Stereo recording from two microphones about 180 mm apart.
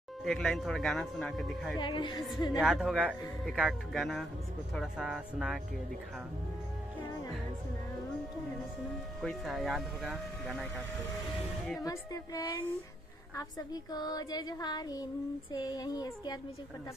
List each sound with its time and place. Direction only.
0.2 s speech: centre (ahead or behind)
1.8 s female singing: 25° left (ahead or behind)
2.5 s speech: centre (ahead or behind)
9.2 s speech: centre (ahead or behind)
11.8 s female singing: 20° left (ahead or behind)
13.9 s female singing: 20° left (ahead or behind)